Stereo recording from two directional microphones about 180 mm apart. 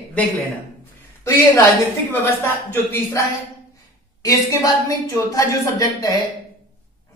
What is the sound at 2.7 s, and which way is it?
Speech, 15° left (ahead or behind).